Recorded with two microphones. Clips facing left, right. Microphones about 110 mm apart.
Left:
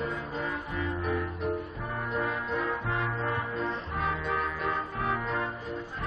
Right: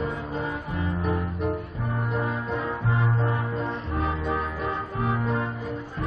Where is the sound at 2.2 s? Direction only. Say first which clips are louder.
Right 2 dB; 20° right (ahead or behind).